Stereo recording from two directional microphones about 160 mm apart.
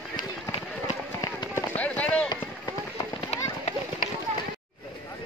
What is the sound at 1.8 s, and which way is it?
Run, 10° left (ahead or behind).